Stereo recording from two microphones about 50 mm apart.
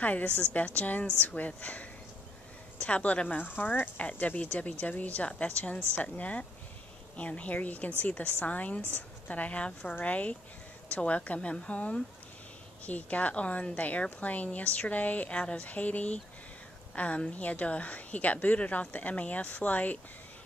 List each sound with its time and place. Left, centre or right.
0.0 s a woman's voice: left